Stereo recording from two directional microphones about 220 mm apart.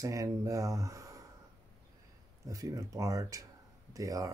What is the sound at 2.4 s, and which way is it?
Speech, 15° right (ahead or behind).